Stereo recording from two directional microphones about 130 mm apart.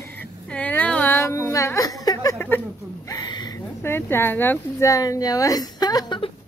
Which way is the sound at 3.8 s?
15° left (ahead or behind).